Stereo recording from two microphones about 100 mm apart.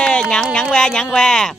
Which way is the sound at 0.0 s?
10° left (ahead or behind).